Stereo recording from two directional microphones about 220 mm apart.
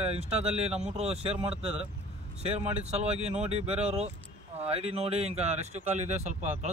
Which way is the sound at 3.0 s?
30° right (ahead or behind).